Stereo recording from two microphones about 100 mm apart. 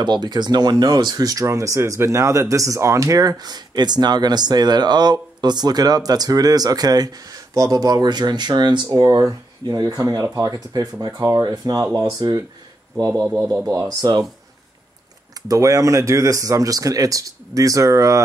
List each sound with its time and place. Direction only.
0.0 s speech: 45° right (ahead or behind)
13.0 s speech: 30° right (ahead or behind)
15.4 s speech: 35° right (ahead or behind)